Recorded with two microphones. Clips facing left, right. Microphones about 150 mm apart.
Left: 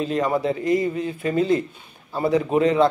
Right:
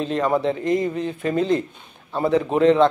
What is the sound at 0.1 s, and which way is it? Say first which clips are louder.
Speech: right 3 dB; 35° right (ahead or behind).